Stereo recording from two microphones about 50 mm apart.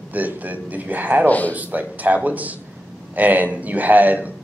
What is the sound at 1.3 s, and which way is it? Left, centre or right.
Speech, left.